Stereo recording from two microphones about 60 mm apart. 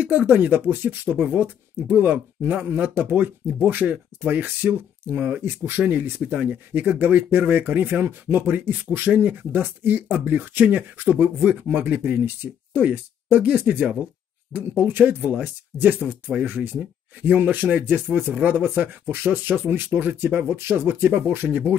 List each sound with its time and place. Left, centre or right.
0.3 s speech: right